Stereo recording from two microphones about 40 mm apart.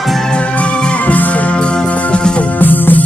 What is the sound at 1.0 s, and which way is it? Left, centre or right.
Music, left.